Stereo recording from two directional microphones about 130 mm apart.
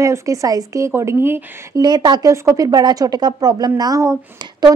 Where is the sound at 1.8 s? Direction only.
35° right (ahead or behind).